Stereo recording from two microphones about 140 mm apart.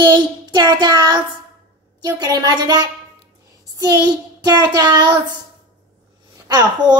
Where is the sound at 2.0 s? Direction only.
30° right (ahead or behind).